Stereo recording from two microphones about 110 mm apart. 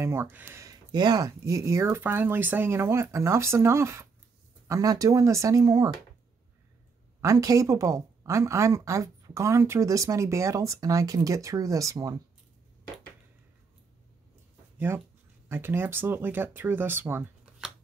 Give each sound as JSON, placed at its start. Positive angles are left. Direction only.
{"t": 0.0, "sound": "speech", "side_deg": -25}
{"t": 0.9, "sound": "speech", "side_deg": -40}
{"t": 7.2, "sound": "speech", "side_deg": -30}
{"t": 14.9, "sound": "speech", "side_deg": -25}